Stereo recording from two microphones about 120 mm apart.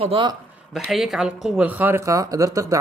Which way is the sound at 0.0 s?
50° right (ahead or behind).